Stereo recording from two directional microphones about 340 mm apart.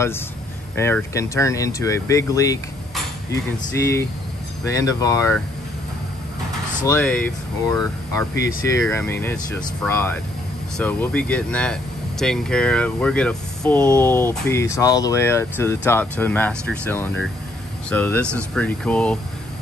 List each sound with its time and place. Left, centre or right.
0.7 s speech: centre
3.3 s hammer: left
4.6 s speech: centre
6.9 s speech: centre